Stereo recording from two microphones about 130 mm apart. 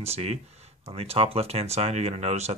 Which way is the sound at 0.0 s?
55° right (ahead or behind).